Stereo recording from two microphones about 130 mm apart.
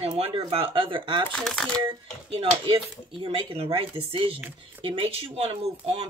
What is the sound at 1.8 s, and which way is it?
Speech, 40° right (ahead or behind).